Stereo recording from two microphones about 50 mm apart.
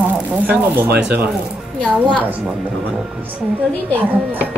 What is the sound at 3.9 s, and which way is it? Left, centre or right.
Speech, right.